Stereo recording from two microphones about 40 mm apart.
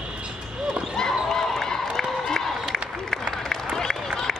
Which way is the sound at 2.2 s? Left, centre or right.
Centre.